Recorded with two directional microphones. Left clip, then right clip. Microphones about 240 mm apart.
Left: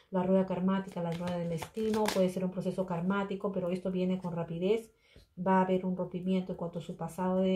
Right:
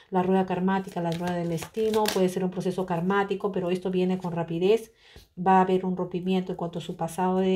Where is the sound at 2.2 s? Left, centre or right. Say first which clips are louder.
Right 6 dB; right.